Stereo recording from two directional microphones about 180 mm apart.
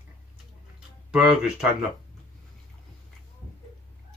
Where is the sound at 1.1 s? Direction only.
5° right (ahead or behind).